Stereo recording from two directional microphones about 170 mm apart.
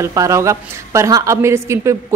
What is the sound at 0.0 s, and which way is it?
A woman's voice, 15° right (ahead or behind).